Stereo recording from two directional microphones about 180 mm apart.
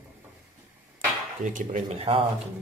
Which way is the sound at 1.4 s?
45° right (ahead or behind).